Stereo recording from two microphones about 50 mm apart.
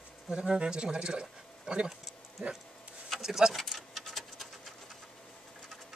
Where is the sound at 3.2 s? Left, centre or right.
Centre.